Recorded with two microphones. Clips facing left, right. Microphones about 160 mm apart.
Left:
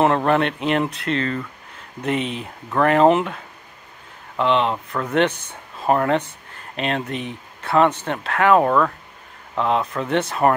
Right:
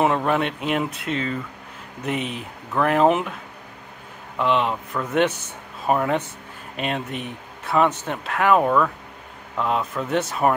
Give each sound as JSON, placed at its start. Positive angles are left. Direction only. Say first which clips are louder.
{"t": 0.0, "sound": "speech", "louder": "left 3 dB", "side_deg": -5}
{"t": 4.4, "sound": "speech", "louder": "left 2 dB", "side_deg": -5}